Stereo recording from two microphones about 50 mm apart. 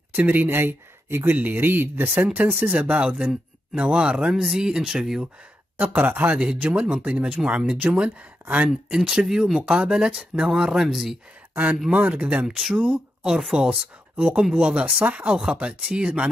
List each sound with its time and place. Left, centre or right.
0.3 s speech: right; by 5.3 s centre
5.8 s speech: right
6.3 s speech: right
7.3 s speech: right
8.9 s speech: centre
9.6 s speech: centre
11.5 s speech: right
13.3 s speech: centre
14.1 s speech: right